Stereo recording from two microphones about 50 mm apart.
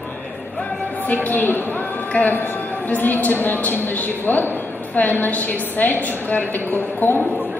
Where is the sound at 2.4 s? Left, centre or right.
Left.